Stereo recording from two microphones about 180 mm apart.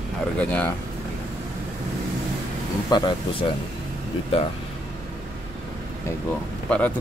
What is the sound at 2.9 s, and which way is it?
Speech, 30° left (ahead or behind).